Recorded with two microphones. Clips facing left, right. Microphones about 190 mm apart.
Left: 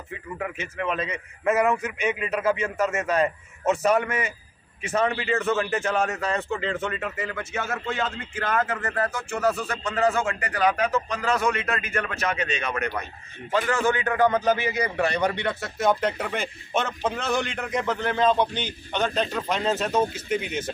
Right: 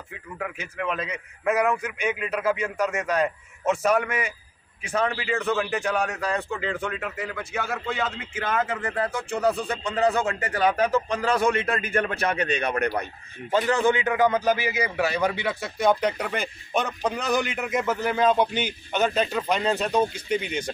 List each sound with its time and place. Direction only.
0.6 s a man's voice: centre (ahead or behind)
2.0 s a man's voice: 10° right (ahead or behind)
2.8 s a man's voice: 5° left (ahead or behind)
3.7 s a man's voice: 10° right (ahead or behind); by 13.0 s 35° right (ahead or behind)
13.6 s a man's voice: 20° right (ahead or behind); by 20.7 s 5° left (ahead or behind)